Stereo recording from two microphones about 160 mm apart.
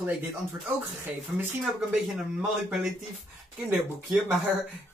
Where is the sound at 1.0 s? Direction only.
15° right (ahead or behind).